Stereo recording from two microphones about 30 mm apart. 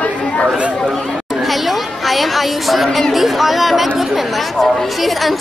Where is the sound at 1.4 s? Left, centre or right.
Centre.